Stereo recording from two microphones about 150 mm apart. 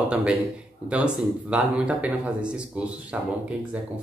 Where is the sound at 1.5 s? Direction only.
10° right (ahead or behind).